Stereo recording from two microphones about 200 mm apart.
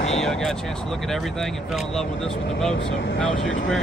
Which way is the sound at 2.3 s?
65° left (ahead or behind).